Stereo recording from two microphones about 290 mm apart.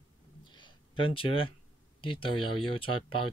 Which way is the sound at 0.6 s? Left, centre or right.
Centre.